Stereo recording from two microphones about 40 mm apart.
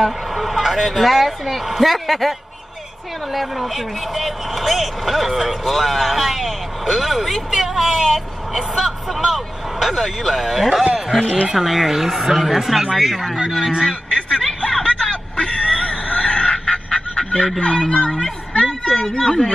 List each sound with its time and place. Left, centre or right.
0.0 s speech: centre
3.3 s speech: centre
13.8 s a sound: centre
17.6 s speech: left